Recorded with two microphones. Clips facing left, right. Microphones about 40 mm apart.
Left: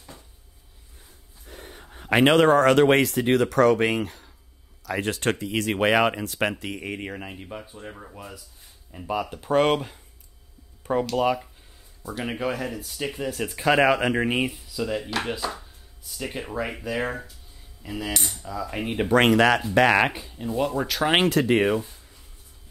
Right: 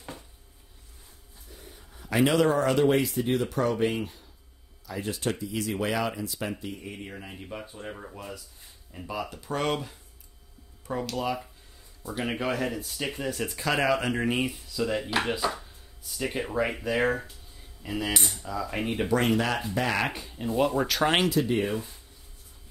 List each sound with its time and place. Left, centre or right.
1.5 s speech: left
4.8 s speech: left
6.6 s speech: left
7.3 s speech: centre
9.0 s speech: centre
9.3 s speech: left
12.0 s speech: centre
13.6 s speech: left
14.5 s speech: centre
15.0 s speech: centre
19.1 s speech: left
20.2 s speech: centre
21.3 s speech: left